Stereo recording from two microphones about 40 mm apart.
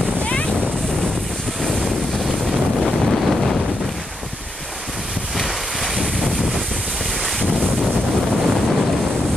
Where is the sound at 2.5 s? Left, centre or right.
Centre.